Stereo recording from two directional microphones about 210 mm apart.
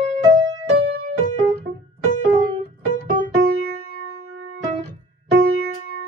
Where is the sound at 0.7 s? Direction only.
45° right (ahead or behind).